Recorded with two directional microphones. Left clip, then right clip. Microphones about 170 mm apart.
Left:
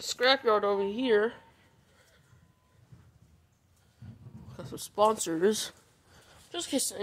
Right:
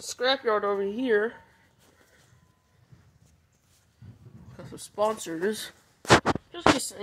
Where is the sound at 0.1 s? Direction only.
Centre (ahead or behind).